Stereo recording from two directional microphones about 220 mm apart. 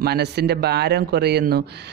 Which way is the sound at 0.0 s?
50° right (ahead or behind).